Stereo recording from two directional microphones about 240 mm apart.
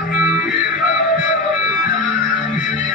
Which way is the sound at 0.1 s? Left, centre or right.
Left.